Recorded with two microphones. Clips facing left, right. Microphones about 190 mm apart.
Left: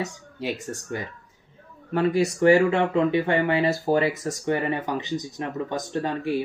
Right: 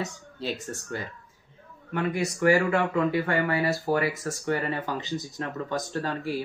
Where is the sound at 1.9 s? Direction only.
30° left (ahead or behind).